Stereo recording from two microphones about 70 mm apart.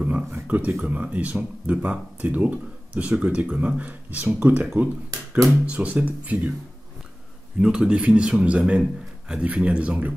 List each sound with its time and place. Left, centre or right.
0.0 s speech: right
5.7 s speech: centre
7.6 s speech: centre